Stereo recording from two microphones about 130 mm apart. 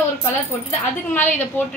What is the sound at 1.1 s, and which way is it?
Speech, 15° left (ahead or behind).